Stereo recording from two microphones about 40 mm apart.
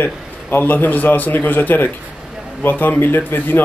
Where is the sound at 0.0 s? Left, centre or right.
Left.